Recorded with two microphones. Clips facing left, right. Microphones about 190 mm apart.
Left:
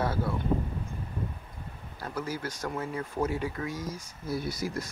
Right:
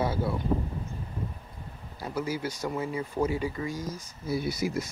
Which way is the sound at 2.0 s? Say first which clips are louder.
Right 3 dB; 10° right (ahead or behind).